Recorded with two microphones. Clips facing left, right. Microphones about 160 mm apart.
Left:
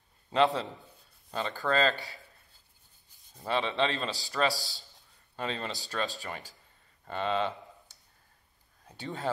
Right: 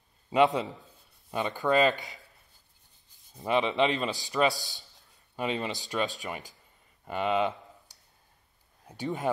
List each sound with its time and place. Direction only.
0.3 s a man's voice: 15° right (ahead or behind)
3.3 s a man's voice: 15° right (ahead or behind)
8.8 s a man's voice: 15° right (ahead or behind)